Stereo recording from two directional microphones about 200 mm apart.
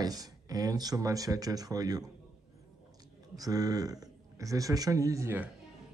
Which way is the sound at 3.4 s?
20° right (ahead or behind).